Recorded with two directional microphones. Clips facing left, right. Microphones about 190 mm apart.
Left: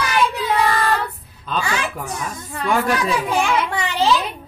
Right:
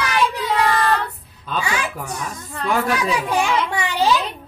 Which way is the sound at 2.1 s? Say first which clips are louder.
Left 1 dB; 10° left (ahead or behind).